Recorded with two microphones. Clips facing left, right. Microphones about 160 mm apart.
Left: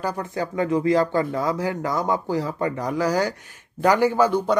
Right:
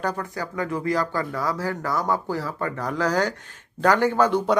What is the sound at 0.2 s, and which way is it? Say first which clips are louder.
Speech: left 4 dB; 25° left (ahead or behind).